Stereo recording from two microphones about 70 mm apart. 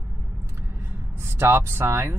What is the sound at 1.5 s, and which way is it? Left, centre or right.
Speech, right.